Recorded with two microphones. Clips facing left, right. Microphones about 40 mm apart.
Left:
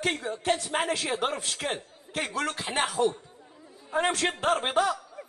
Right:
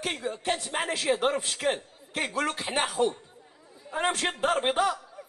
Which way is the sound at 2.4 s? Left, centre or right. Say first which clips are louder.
Even; right.